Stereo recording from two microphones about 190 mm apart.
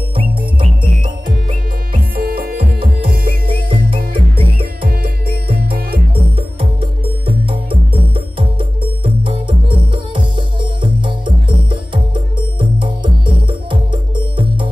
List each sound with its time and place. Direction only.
0.1 s music: 25° right (ahead or behind)
2.1 s music: 50° right (ahead or behind)
3.4 s music: 30° right (ahead or behind)
4.8 s music: 50° right (ahead or behind)
6.3 s music: 30° right (ahead or behind)